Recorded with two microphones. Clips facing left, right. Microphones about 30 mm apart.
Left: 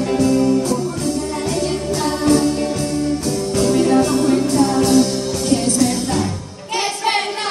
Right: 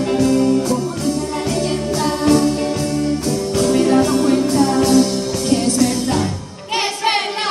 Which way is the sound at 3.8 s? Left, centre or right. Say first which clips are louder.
Right 1 dB; centre.